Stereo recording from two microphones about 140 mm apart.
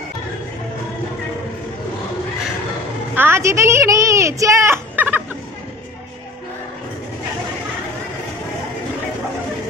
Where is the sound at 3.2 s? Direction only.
15° right (ahead or behind).